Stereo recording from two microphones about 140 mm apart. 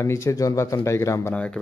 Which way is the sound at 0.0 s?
20° left (ahead or behind).